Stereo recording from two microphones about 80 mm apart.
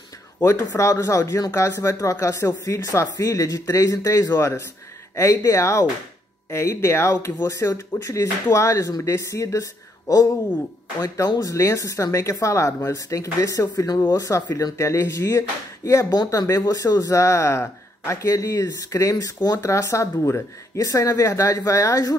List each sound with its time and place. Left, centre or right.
0.5 s speech: left
11.4 s speech: left